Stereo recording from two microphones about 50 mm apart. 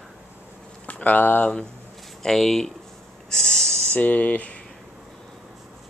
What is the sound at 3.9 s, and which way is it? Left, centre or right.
Speech, left.